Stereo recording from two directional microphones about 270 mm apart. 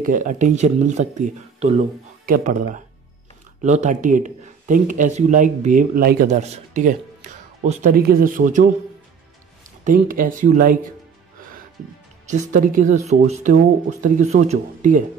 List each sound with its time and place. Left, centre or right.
0.0 s speech: right
9.8 s speech: right
12.3 s speech: right